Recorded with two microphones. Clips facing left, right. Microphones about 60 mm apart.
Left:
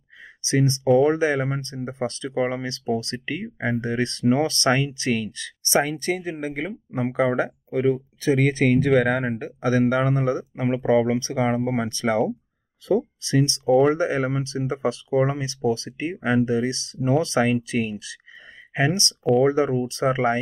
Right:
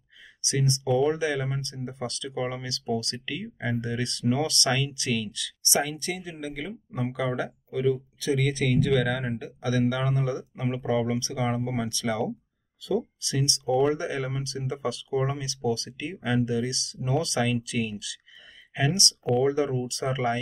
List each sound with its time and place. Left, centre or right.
0.4 s speech: left
13.7 s speech: centre
13.9 s speech: left